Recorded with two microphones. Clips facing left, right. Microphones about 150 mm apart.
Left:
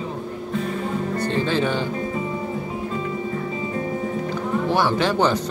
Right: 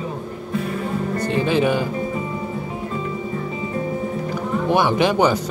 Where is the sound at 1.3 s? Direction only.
15° right (ahead or behind).